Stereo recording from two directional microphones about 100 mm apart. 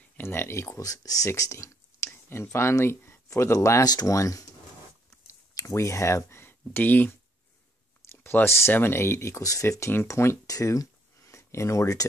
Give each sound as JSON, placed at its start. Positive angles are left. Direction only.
{"t": 0.2, "sound": "speech", "side_deg": 25}
{"t": 2.0, "sound": "speech", "side_deg": 20}